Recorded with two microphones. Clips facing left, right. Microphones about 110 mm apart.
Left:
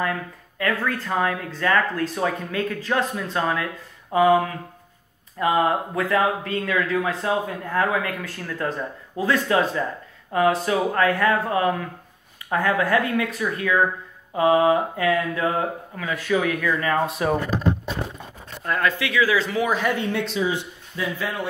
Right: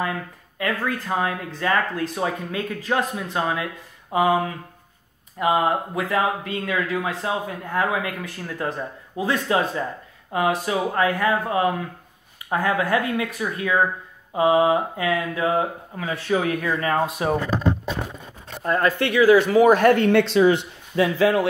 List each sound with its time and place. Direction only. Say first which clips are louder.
0.0 s speech: left 1 dB; 20° right (ahead or behind)
5.4 s speech: even; 10° right (ahead or behind)
7.2 s speech: left 2 dB; centre (ahead or behind)
7.7 s a man's voice: left 1 dB; 15° right (ahead or behind)
10.7 s speech: left 2 dB; 5° right (ahead or behind)
11.0 s a woman's voice: even; 15° right (ahead or behind)
16.0 s a man's voice: even; 25° right (ahead or behind)
16.9 s speech: even; 20° right (ahead or behind)
18.6 s speech: right 3 dB; 35° right (ahead or behind)
18.9 s speech: right 6 dB; 50° right (ahead or behind); by 21.5 s 75° right (ahead or behind)